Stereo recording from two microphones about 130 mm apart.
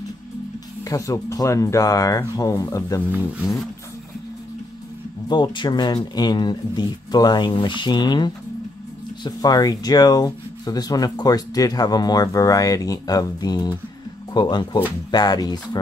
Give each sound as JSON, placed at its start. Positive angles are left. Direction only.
{"t": 0.8, "sound": "speech", "side_deg": 25}
{"t": 5.3, "sound": "speech", "side_deg": 35}